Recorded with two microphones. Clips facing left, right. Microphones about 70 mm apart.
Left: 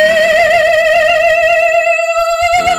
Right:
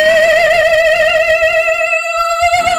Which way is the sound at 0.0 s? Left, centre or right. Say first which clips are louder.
Even; centre.